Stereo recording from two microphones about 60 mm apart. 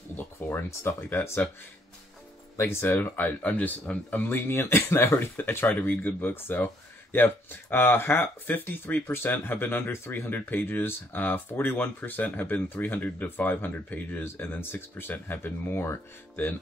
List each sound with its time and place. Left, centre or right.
0.1 s a sound: left
0.9 s speech: left
2.6 s speech: left
4.3 s speech: left